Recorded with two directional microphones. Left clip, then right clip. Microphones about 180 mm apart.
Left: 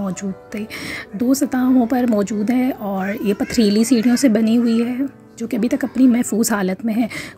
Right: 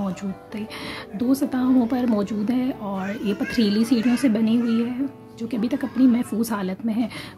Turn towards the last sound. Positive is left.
turn(degrees=25)  # may be behind; listen again after turning